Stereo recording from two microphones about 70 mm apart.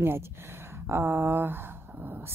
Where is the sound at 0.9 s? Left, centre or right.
Right.